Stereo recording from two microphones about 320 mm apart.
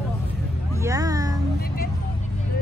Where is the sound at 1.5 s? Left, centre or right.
Left.